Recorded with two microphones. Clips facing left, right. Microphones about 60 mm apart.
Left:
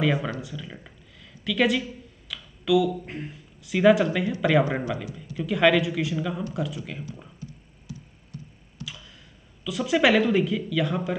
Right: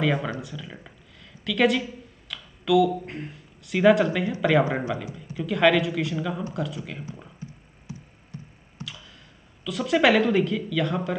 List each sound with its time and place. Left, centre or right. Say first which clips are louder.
0.0 s speech: even; centre
4.8 s speech: right 1 dB; centre
5.4 s speech: even; centre
7.9 s a sound: even; right
8.8 s clicking: even; right
9.7 s speech: right 1 dB; centre